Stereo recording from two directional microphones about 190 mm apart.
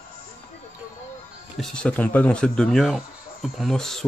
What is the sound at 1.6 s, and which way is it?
Speech, 5° left (ahead or behind).